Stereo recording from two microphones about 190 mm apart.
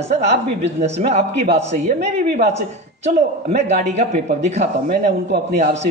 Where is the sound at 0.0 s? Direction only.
35° right (ahead or behind).